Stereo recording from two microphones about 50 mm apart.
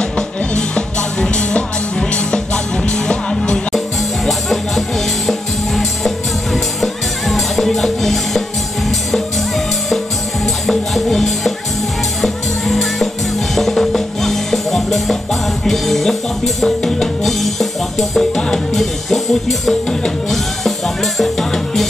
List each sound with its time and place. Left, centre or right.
0.6 s music: centre
4.3 s music: centre
10.4 s music: centre